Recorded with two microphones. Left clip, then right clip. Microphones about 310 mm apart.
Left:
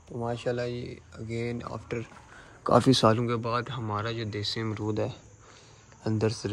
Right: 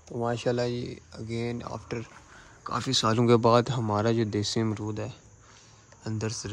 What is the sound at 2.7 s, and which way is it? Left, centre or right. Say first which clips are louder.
Speech: left 6 dB; centre.